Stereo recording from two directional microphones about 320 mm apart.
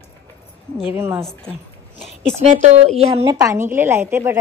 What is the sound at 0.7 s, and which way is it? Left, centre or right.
Speech, centre.